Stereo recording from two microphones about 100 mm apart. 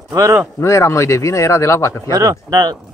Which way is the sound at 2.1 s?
35° right (ahead or behind).